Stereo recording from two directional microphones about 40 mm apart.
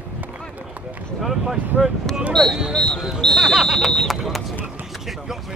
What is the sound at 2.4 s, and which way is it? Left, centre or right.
Speech, centre.